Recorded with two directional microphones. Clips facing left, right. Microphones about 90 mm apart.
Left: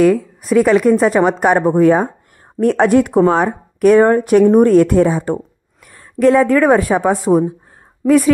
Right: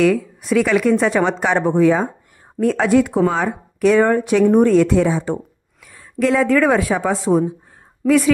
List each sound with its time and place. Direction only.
0.0 s a woman's voice: 35° left (ahead or behind)